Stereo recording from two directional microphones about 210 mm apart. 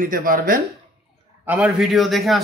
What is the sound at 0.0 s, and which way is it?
Speech, 40° right (ahead or behind).